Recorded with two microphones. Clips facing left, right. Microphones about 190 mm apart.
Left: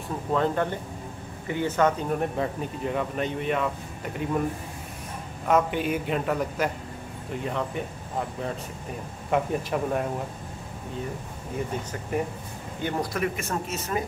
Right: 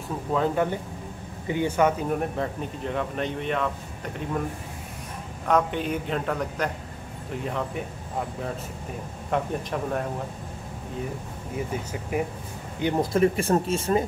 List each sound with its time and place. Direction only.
0.3 s speech: 5° right (ahead or behind)
5.5 s a man's voice: 5° left (ahead or behind)
9.3 s a man's voice: 5° left (ahead or behind)
12.1 s speech: 10° right (ahead or behind)
12.8 s speech: 25° right (ahead or behind)